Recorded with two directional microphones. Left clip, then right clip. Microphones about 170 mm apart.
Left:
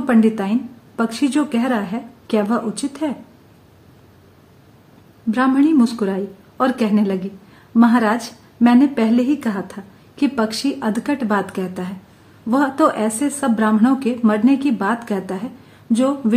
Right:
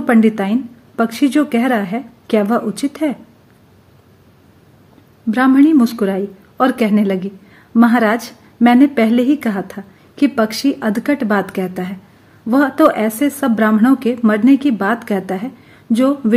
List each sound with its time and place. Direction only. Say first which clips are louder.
0.0 s a woman's voice: right 3 dB; 25° right (ahead or behind)
5.3 s a woman's voice: right 4 dB; 25° right (ahead or behind)